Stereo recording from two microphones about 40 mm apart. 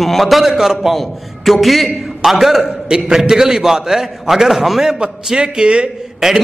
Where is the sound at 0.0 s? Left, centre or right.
Centre.